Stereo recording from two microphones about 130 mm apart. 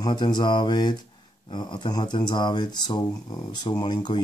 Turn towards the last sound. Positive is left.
turn(degrees=35)  # may be behind; listen again after turning